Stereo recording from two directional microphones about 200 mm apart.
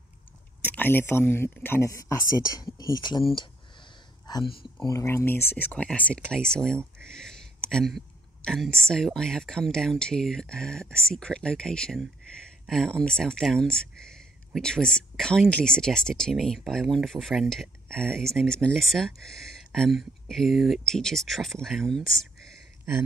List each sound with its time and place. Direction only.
0.6 s speech: 10° left (ahead or behind)
4.3 s speech: 25° left (ahead or behind); by 22.3 s centre (ahead or behind)